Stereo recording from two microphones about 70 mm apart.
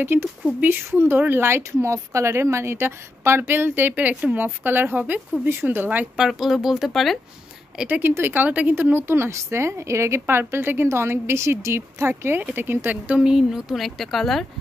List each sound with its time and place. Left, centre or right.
0.0 s a woman's voice: right
5.4 s speech: right
6.1 s speech: centre
7.9 s a woman's voice: right
13.2 s speech: centre